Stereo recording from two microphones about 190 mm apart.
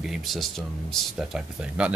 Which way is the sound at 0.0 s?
Centre (ahead or behind).